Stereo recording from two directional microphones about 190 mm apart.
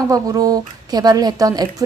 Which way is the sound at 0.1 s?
20° right (ahead or behind).